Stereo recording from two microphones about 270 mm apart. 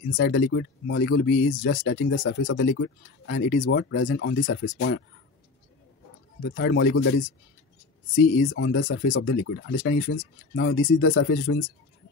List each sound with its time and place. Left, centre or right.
0.1 s speech: left
6.4 s speech: left
8.2 s speech: left